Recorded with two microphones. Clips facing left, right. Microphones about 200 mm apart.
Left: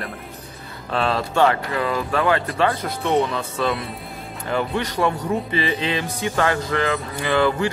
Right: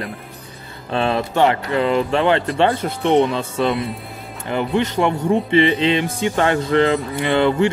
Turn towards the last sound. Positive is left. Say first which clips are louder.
# right 3 dB
turn(degrees=-25)  # may be behind; listen again after turning